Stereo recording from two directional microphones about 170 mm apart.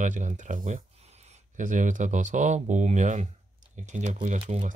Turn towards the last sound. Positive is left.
turn(degrees=-40)  # may be behind; listen again after turning